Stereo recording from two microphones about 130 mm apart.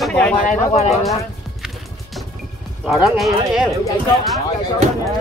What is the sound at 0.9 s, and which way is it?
Speech, centre (ahead or behind).